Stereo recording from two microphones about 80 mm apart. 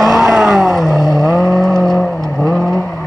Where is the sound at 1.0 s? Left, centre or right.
Left.